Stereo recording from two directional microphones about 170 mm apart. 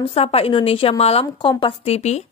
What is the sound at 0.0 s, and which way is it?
A woman's voice, 35° left (ahead or behind).